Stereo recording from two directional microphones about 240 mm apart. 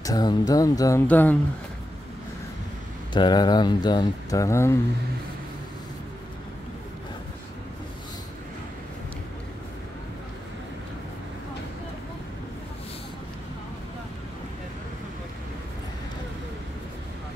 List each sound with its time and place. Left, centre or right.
0.0 s speech: centre
3.1 s speech: centre